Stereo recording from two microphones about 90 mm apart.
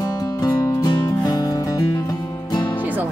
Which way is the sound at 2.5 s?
55° left (ahead or behind).